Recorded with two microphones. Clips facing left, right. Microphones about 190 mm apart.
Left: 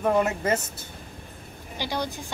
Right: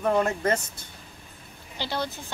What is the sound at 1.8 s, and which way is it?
Speech, 15° left (ahead or behind).